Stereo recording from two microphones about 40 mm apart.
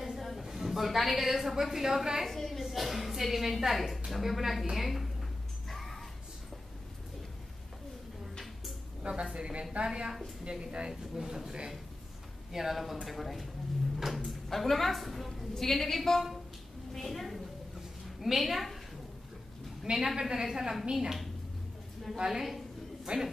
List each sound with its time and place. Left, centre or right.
0.0 s a woman's voice: centre
2.2 s a woman's voice: centre
5.7 s music: centre
9.0 s a woman's voice: right
9.8 s a woman's voice: centre
10.9 s a woman's voice: centre
12.5 s a woman's voice: centre
19.8 s a woman's voice: centre
22.2 s a woman's voice: centre